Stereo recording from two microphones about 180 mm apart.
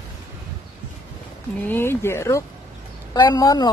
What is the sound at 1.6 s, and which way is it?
A woman's voice, 10° left (ahead or behind).